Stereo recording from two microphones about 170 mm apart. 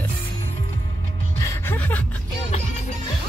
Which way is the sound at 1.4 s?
15° left (ahead or behind).